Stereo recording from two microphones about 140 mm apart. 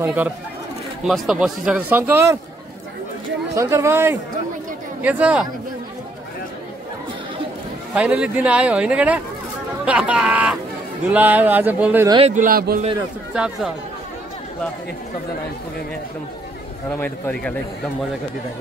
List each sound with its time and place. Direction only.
0.0 s speech: 10° right (ahead or behind)
1.0 s speech: centre (ahead or behind)
3.5 s speech: 20° right (ahead or behind)
7.9 s speech: 5° right (ahead or behind)
12.2 s speech: 50° right (ahead or behind)
12.4 s a man's voice: 90° right
13.3 s speech: 5° right (ahead or behind)
17.0 s a man's voice: 5° left (ahead or behind)